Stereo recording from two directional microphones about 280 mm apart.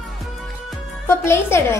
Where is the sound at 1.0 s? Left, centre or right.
Centre.